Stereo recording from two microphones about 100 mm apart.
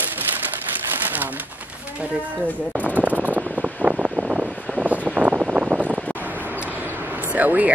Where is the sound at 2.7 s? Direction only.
15° right (ahead or behind).